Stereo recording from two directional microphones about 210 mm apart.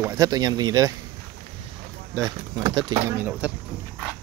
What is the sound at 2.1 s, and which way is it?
Speech, 15° right (ahead or behind).